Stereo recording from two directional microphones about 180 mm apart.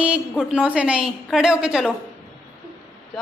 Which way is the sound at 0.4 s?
5° right (ahead or behind).